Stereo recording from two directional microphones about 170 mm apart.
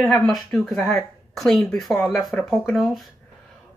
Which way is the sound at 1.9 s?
15° left (ahead or behind).